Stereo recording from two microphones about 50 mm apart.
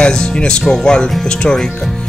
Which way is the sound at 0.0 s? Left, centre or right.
Centre.